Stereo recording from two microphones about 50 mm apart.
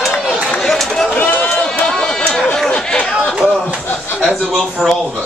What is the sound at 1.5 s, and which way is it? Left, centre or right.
Run, centre.